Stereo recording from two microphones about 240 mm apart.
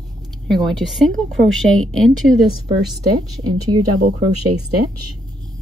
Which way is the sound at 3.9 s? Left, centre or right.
Right.